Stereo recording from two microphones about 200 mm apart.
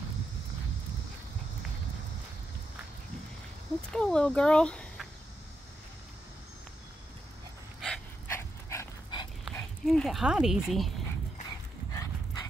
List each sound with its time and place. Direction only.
3.9 s speech: 5° left (ahead or behind)
7.8 s dog: 10° left (ahead or behind)
9.4 s speech: centre (ahead or behind)
11.9 s horse: 15° left (ahead or behind)